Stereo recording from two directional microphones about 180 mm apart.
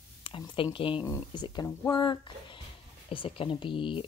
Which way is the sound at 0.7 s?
30° left (ahead or behind).